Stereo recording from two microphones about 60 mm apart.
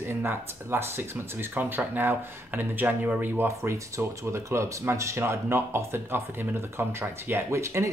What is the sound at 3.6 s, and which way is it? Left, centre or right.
Speech, right.